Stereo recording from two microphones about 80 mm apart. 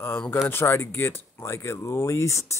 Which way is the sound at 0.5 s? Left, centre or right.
Left.